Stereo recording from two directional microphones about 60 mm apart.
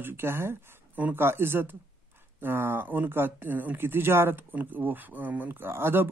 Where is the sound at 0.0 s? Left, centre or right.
Right.